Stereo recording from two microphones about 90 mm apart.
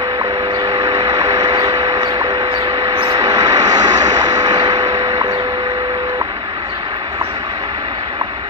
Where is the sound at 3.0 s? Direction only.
50° right (ahead or behind).